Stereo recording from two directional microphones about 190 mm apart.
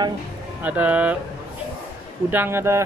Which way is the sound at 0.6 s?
10° right (ahead or behind).